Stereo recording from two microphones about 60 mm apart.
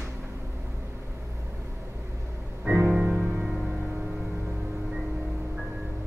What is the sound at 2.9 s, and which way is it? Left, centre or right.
Music, centre.